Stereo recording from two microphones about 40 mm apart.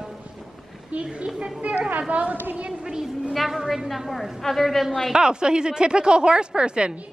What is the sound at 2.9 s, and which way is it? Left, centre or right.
Speech, centre.